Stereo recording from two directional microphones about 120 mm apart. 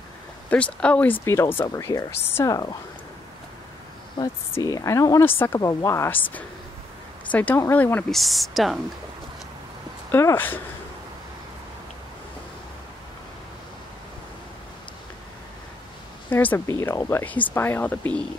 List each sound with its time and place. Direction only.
0.5 s speech: 10° left (ahead or behind)
4.5 s speech: 25° left (ahead or behind)
5.6 s speech: 30° left (ahead or behind)
7.2 s speech: 15° left (ahead or behind)
8.1 s speech: centre (ahead or behind)
10.1 s speech: 20° left (ahead or behind)
16.3 s speech: 15° left (ahead or behind)